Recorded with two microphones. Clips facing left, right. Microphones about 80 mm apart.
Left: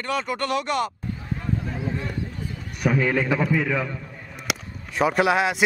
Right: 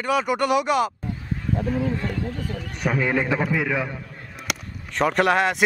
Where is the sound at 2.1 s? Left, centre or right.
Right.